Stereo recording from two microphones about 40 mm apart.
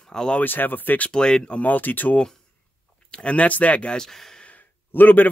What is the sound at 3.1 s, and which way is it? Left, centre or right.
Speech, left.